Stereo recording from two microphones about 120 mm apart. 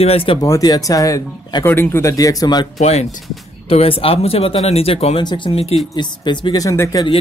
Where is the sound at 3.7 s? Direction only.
50° left (ahead or behind).